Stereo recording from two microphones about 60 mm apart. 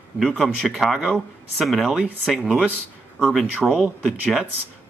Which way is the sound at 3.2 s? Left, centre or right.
Centre.